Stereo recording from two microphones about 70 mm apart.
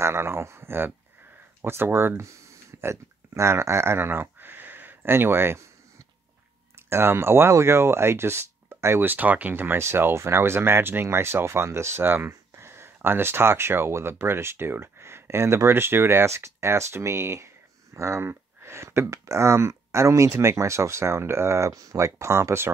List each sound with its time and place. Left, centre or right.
0.0 s speech: right
6.9 s speech: right